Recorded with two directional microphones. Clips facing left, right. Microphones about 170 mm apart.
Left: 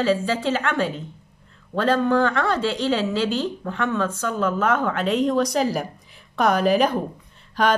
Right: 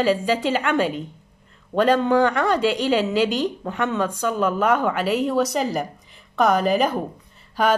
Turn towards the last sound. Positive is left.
turn(degrees=-5)  # may be behind; listen again after turning